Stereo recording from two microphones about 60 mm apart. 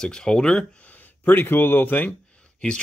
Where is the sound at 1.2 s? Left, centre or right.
Left.